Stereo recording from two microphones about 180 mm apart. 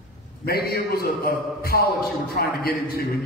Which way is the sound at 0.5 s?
60° left (ahead or behind).